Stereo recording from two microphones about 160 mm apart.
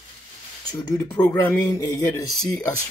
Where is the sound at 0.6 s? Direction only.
20° left (ahead or behind).